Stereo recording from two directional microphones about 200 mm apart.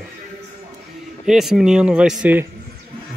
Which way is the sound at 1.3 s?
Centre (ahead or behind).